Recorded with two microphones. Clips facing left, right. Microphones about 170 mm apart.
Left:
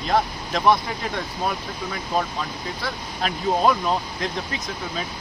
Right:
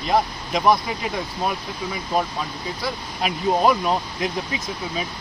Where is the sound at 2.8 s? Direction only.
5° right (ahead or behind).